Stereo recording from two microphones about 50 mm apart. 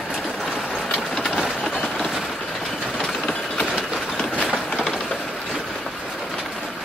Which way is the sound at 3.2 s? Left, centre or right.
Centre.